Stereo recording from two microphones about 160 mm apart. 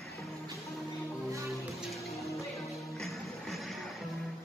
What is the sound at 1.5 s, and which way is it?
Music, centre (ahead or behind).